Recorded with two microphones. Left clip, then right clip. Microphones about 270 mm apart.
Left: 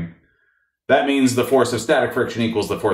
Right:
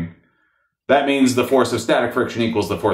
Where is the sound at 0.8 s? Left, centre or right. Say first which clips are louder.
Right 1 dB; right.